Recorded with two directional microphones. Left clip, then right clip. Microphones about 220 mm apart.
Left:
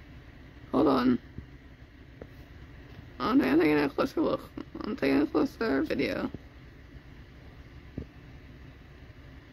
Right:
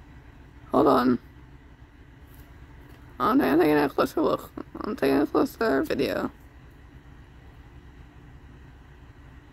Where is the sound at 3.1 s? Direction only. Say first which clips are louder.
Right 4 dB; 15° right (ahead or behind).